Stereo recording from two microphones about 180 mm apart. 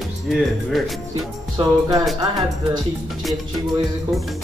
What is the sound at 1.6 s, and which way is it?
Speech, 20° right (ahead or behind).